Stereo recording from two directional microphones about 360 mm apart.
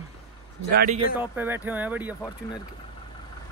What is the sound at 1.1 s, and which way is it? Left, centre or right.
Speech, centre.